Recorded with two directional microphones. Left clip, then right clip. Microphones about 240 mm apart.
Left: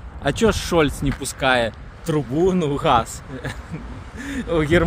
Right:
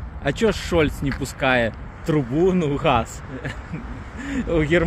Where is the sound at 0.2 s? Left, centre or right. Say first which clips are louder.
Left 2 dB; centre.